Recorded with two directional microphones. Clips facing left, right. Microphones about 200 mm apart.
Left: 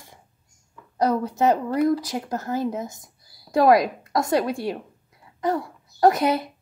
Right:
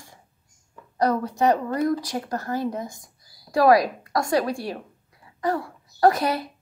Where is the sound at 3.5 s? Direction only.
20° left (ahead or behind).